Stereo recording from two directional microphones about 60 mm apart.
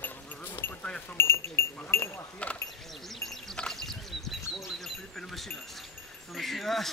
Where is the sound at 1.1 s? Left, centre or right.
Left.